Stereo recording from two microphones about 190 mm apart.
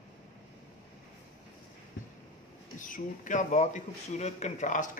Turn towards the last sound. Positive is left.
turn(degrees=40)  # may be behind; listen again after turning